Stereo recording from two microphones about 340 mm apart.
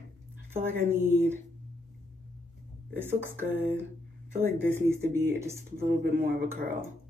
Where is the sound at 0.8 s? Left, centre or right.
Centre.